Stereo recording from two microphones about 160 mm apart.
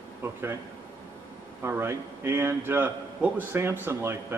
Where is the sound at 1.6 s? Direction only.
15° right (ahead or behind).